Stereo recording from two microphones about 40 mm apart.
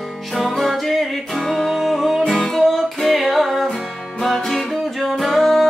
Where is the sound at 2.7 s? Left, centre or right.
Centre.